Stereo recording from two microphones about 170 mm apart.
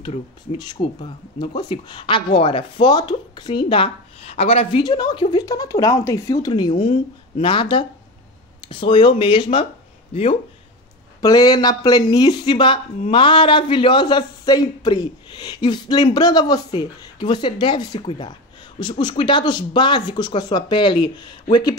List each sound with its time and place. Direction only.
0.0 s speech: 40° left (ahead or behind)
0.6 s speech: 25° left (ahead or behind)
11.1 s speech: 20° left (ahead or behind)